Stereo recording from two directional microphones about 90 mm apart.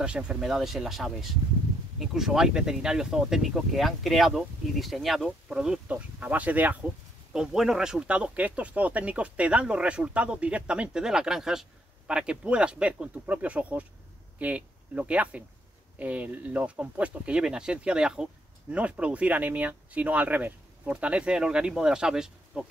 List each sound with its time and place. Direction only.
0.0 s speech: 10° right (ahead or behind)
7.3 s speech: 5° right (ahead or behind)